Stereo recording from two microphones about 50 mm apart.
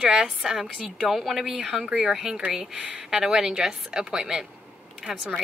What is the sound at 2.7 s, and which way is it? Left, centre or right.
Speech, right.